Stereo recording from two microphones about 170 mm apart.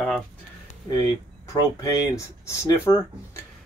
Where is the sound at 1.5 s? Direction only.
20° left (ahead or behind).